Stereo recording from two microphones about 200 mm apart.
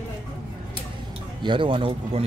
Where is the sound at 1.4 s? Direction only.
25° right (ahead or behind).